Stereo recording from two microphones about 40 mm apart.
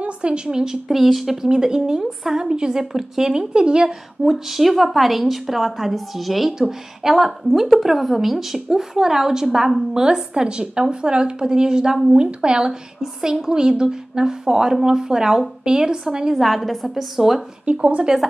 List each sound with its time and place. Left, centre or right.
0.0 s speech: right
0.8 s a woman's voice: centre
3.5 s a woman's voice: right
4.2 s a woman's voice: centre
10.0 s a woman's voice: centre
16.3 s a woman's voice: centre
17.6 s speech: right
18.0 s a woman's voice: centre